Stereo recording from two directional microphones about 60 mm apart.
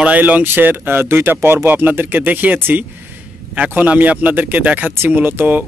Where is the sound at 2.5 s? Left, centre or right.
Right.